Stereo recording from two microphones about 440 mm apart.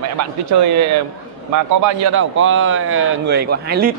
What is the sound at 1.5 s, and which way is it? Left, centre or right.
Speech, right.